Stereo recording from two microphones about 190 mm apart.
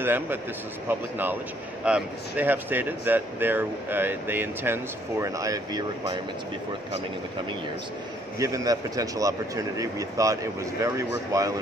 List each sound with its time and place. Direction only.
0.0 s speech: 10° right (ahead or behind)
8.4 s speech: 20° right (ahead or behind)